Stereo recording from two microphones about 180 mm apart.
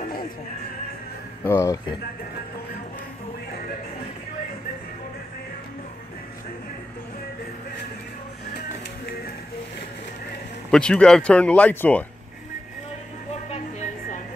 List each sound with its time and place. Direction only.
1.4 s speech: 15° left (ahead or behind)
10.7 s speech: 5° left (ahead or behind)
13.5 s music: 40° left (ahead or behind)